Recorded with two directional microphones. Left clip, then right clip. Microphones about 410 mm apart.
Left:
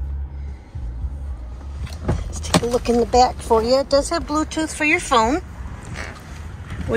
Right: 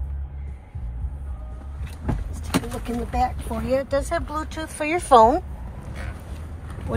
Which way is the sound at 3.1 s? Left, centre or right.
Centre.